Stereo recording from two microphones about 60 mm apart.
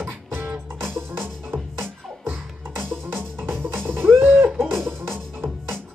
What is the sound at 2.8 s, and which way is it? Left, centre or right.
Music, right.